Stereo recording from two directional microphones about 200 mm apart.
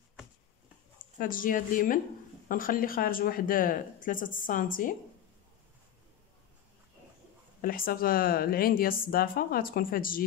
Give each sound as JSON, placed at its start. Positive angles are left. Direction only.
{"t": 1.1, "sound": "speech", "side_deg": 45}
{"t": 7.6, "sound": "speech", "side_deg": 45}